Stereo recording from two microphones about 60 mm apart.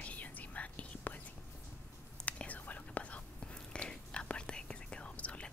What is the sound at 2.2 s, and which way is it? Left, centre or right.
Whispering, left.